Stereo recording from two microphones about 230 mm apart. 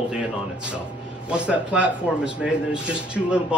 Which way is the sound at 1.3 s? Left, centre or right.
Centre.